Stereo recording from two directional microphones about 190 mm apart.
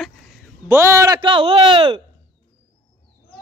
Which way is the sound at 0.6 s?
15° right (ahead or behind).